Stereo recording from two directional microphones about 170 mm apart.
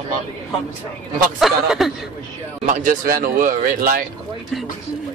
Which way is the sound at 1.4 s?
Centre (ahead or behind).